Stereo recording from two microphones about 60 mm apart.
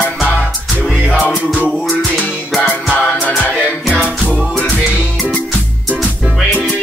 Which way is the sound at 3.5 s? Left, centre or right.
Centre.